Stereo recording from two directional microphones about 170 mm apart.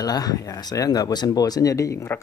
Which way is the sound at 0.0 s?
20° left (ahead or behind).